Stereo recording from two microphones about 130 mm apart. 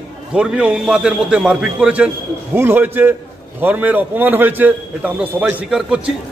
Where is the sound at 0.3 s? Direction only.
10° right (ahead or behind).